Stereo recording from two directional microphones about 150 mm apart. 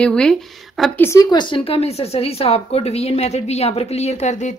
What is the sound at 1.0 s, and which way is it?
A woman's voice, 20° left (ahead or behind).